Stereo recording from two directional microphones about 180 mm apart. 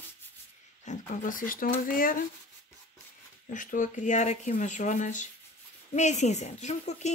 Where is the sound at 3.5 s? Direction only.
45° left (ahead or behind).